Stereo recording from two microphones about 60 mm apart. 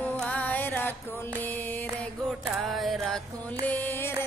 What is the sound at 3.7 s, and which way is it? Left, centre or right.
Music, left.